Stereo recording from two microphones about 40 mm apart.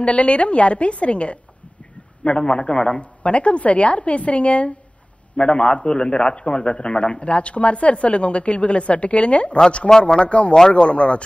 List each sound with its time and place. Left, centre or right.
0.0 s a woman's voice: left